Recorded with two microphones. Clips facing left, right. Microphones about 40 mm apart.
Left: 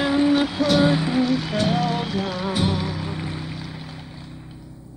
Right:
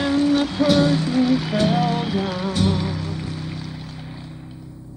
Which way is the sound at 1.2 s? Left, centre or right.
Centre.